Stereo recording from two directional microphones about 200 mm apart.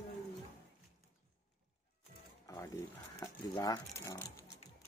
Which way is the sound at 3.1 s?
20° left (ahead or behind).